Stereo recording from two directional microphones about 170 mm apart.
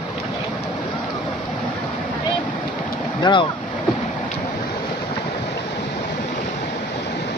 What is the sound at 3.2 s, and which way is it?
Speech, 30° left (ahead or behind).